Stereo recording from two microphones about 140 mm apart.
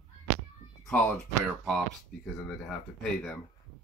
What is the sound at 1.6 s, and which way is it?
Speech, 5° left (ahead or behind).